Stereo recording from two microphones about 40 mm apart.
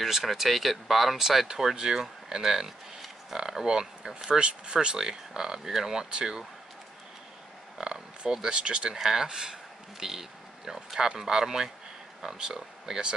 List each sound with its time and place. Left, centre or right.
0.0 s speech: centre; by 4.7 s right
4.8 s speech: centre
7.7 s oink: right
8.4 s speech: centre
8.9 s speech: centre